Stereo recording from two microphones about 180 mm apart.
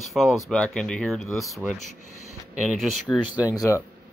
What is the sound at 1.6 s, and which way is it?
Speech, 10° right (ahead or behind).